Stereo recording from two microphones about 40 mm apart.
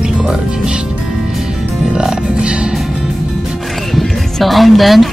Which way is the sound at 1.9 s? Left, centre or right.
Centre.